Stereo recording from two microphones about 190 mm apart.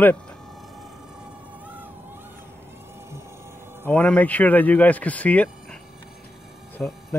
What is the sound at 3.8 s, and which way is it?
Speech, 10° left (ahead or behind).